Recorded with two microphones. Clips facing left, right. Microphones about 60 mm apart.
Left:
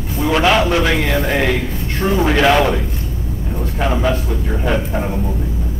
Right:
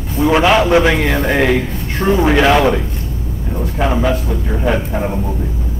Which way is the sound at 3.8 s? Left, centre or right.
Centre.